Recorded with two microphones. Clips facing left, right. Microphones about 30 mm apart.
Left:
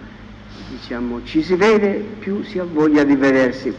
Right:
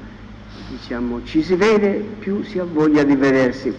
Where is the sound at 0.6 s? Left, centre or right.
Left.